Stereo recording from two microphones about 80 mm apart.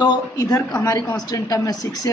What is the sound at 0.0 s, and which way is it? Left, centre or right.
Speech, left.